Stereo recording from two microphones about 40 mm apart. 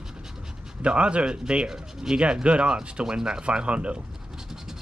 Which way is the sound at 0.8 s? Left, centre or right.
Right.